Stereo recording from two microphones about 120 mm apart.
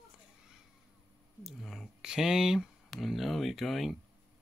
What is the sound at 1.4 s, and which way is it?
Speech, centre (ahead or behind).